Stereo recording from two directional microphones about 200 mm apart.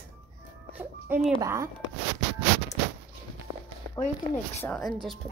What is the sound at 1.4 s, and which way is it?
Speech, 15° right (ahead or behind).